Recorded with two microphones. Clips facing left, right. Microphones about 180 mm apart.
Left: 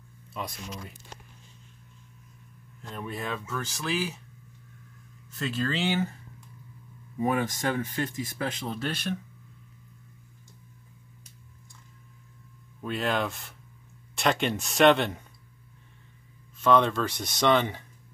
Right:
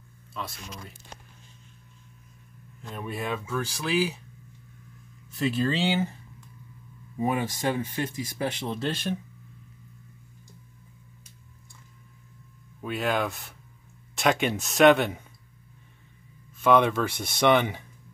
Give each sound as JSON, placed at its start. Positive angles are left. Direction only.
{"t": 2.9, "sound": "speech", "side_deg": -5}
{"t": 5.3, "sound": "speech", "side_deg": -15}
{"t": 7.2, "sound": "speech", "side_deg": -20}
{"t": 12.8, "sound": "speech", "side_deg": -5}
{"t": 16.6, "sound": "speech", "side_deg": -10}